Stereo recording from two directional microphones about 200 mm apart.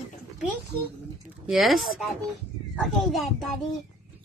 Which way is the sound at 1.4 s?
Centre (ahead or behind).